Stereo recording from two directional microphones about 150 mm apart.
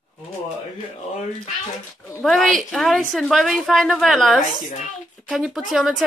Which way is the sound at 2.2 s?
Centre (ahead or behind).